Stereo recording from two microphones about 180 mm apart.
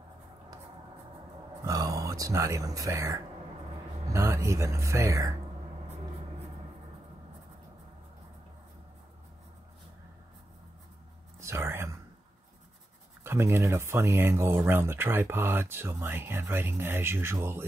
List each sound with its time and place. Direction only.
1.6 s speech: 20° right (ahead or behind)
11.3 s whispering: 15° right (ahead or behind)
13.2 s speech: 15° right (ahead or behind)